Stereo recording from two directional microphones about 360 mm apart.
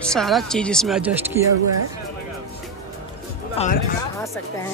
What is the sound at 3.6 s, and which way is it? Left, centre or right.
Speech, centre.